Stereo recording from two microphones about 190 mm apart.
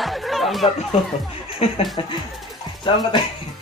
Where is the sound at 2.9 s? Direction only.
25° left (ahead or behind).